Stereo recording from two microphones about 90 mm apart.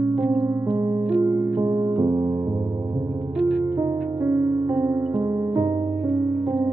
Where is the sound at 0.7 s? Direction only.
30° right (ahead or behind).